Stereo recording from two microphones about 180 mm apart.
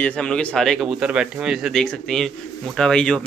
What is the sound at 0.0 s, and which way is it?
A man's voice, 5° left (ahead or behind).